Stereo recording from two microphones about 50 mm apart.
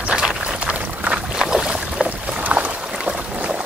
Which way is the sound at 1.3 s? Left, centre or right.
Centre.